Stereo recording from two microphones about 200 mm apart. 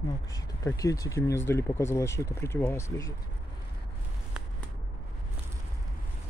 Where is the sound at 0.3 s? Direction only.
15° left (ahead or behind).